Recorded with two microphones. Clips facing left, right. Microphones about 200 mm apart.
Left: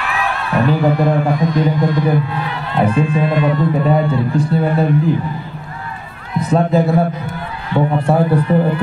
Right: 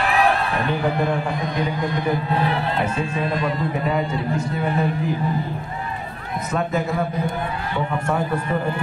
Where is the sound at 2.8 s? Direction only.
35° left (ahead or behind).